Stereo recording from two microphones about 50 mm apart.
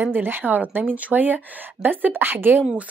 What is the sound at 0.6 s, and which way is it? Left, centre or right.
Speech, right.